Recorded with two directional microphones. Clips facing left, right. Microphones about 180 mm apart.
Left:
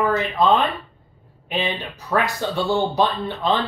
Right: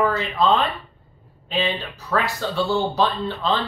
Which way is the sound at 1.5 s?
15° left (ahead or behind).